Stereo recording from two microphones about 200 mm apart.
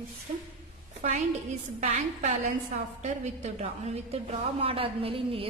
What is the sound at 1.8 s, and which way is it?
A woman's voice, 35° right (ahead or behind).